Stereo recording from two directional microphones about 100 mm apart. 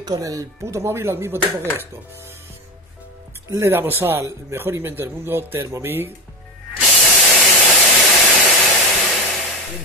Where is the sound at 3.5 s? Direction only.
25° right (ahead or behind).